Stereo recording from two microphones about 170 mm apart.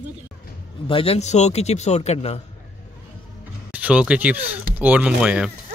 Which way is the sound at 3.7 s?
5° right (ahead or behind).